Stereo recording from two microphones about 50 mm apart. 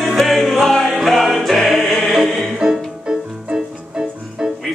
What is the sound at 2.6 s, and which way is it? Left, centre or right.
Music, centre.